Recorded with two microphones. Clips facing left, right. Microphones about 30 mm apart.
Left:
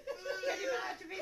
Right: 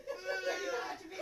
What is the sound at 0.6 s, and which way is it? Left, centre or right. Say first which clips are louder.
Speech: left 1 dB; centre.